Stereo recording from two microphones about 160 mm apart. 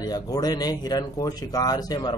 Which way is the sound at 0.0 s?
25° left (ahead or behind).